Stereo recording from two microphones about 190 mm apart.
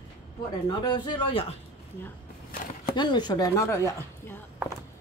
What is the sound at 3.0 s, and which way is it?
Speech, 25° left (ahead or behind).